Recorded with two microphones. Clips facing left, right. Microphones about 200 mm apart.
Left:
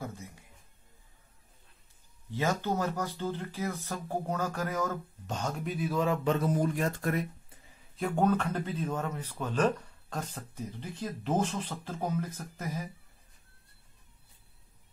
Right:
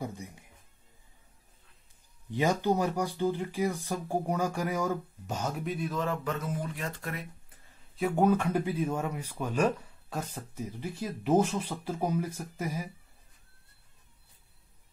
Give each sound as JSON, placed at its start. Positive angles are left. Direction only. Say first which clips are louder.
{"t": 0.0, "sound": "music", "louder": "right 3 dB", "side_deg": -15}
{"t": 2.3, "sound": "speech", "louder": "right 3 dB", "side_deg": -15}
{"t": 6.2, "sound": "speech", "louder": "left 6 dB", "side_deg": 35}
{"t": 7.9, "sound": "speech", "louder": "right 2 dB", "side_deg": -5}